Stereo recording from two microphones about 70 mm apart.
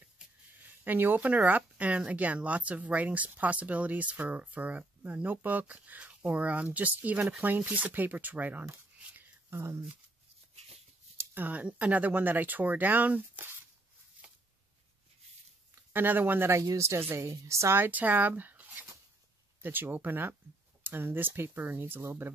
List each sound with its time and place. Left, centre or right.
0.8 s speech: right
9.1 s a sound: right
11.1 s speech: right
15.9 s speech: right
16.7 s a woman's voice: right
17.7 s speech: right